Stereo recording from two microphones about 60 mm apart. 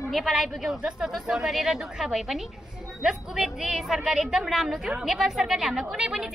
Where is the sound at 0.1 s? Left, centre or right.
Centre.